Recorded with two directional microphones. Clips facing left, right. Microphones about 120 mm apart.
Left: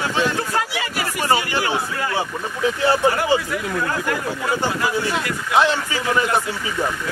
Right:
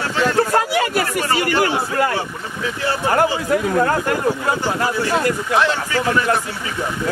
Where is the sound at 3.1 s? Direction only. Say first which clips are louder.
Right 3 dB; 45° right (ahead or behind).